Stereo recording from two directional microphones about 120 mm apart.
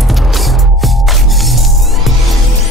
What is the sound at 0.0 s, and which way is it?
Music, centre (ahead or behind).